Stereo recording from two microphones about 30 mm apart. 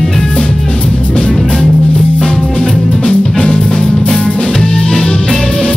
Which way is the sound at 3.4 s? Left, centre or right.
Left.